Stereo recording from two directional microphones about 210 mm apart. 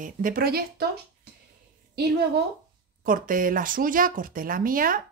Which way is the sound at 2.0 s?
50° right (ahead or behind).